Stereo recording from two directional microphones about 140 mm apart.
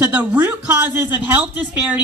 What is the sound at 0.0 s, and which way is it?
A woman's voice, 10° right (ahead or behind).